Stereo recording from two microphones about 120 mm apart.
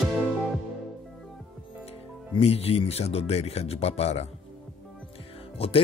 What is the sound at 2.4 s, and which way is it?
Speech, 55° left (ahead or behind).